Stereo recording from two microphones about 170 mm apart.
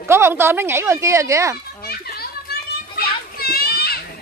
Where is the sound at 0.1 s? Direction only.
15° right (ahead or behind).